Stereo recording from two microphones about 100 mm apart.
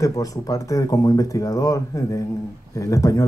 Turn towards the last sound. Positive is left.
turn(degrees=35)  # may be behind; listen again after turning